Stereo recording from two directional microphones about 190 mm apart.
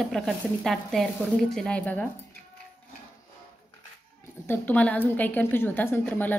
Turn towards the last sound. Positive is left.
turn(degrees=10)  # may be behind; listen again after turning